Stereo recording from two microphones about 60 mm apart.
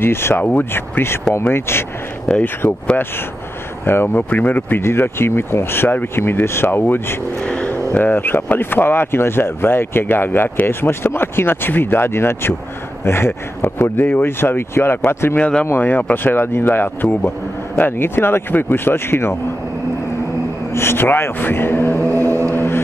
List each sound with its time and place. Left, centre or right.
0.0 s speech: left
0.4 s speech: left
0.7 s speech: left
2.2 s speech: left
3.8 s speech: left
7.4 s vehicle: left
7.7 s speech: left
15.8 s speech: left
20.7 s speech: left